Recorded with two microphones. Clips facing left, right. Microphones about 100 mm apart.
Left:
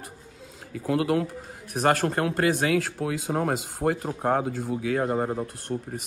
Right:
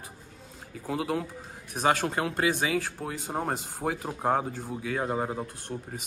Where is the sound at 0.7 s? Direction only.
60° left (ahead or behind).